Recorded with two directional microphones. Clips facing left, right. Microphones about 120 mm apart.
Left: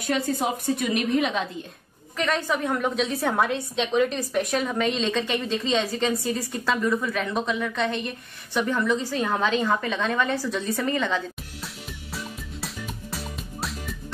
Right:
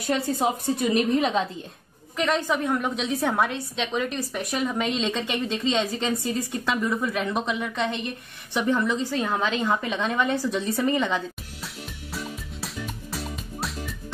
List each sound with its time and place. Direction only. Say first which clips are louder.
0.1 s a woman's voice: right 1 dB; 30° right (ahead or behind)
2.1 s a woman's voice: right 1 dB; 15° right (ahead or behind)
2.6 s a woman's voice: even; 5° right (ahead or behind)
3.0 s a woman's voice: left 1 dB; 15° right (ahead or behind)
3.3 s a woman's voice: left 2 dB; centre (ahead or behind); by 11.2 s 15° right (ahead or behind)
11.6 s music: right 2 dB; centre (ahead or behind)